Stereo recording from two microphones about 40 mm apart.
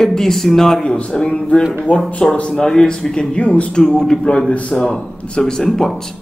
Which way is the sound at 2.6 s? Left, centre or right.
Centre.